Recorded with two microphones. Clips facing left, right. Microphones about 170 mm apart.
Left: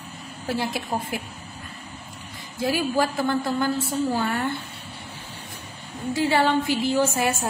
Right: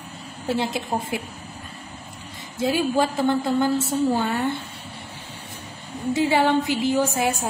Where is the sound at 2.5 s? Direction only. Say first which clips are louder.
Right 2 dB; 25° right (ahead or behind).